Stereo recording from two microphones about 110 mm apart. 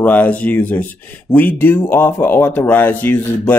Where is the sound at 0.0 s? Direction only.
15° left (ahead or behind).